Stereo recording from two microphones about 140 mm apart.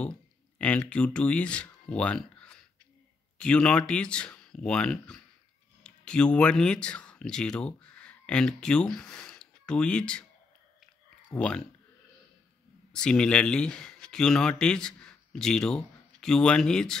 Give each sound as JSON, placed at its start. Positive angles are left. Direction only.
{"t": 0.6, "sound": "speech", "side_deg": 10}
{"t": 11.3, "sound": "speech", "side_deg": 5}
{"t": 12.9, "sound": "speech", "side_deg": 5}